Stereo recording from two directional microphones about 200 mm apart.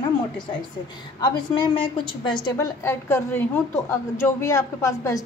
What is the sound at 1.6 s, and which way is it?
A woman's voice, 25° left (ahead or behind).